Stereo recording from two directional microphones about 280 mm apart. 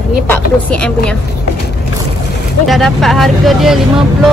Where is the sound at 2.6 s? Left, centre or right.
Centre.